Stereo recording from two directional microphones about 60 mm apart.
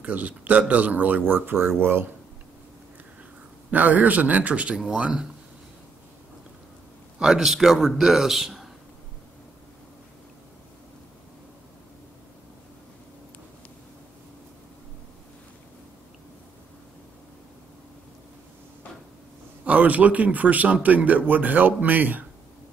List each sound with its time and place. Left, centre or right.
0.0 s a man's voice: right
3.7 s a man's voice: right
7.2 s a man's voice: centre
19.6 s a man's voice: right